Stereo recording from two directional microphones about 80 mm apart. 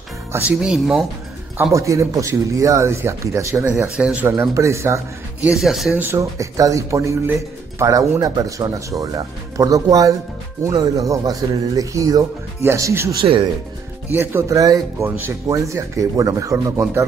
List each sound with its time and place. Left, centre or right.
0.4 s speech: centre
1.6 s speech: right
3.9 s speech: centre
4.3 s speech: right
5.5 s speech: centre
6.1 s speech: right
12.6 s speech: right
13.2 s speech: right
14.1 s speech: right
14.5 s speech: right
15.0 s speech: right
15.4 s speech: right